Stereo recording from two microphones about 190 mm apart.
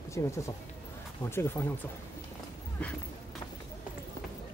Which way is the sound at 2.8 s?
5° left (ahead or behind).